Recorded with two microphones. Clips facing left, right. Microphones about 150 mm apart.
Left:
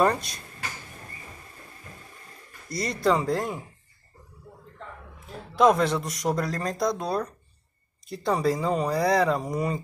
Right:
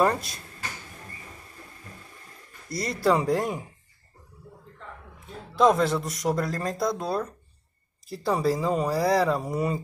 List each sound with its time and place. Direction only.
0.0 s speech: centre (ahead or behind)
2.7 s speech: centre (ahead or behind)
5.6 s speech: centre (ahead or behind)